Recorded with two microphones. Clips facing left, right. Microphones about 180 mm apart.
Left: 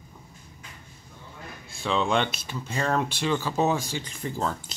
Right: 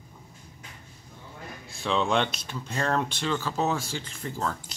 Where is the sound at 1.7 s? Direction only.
Centre (ahead or behind).